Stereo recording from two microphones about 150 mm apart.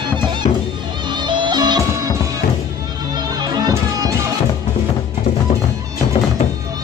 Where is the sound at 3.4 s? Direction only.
25° right (ahead or behind).